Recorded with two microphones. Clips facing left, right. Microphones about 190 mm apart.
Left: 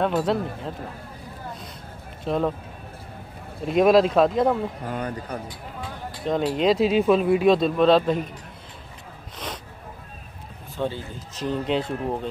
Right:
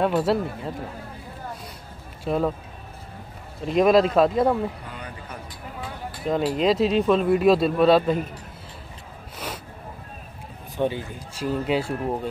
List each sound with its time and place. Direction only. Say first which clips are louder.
0.0 s speech: right 1 dB; 5° right (ahead or behind)
2.2 s speech: even; 5° right (ahead or behind)
3.6 s speech: left 1 dB; centre (ahead or behind)
4.8 s speech: left 8 dB; 45° left (ahead or behind)
5.8 s speech: right 1 dB; 5° right (ahead or behind)
10.8 s speech: right 3 dB; 15° right (ahead or behind)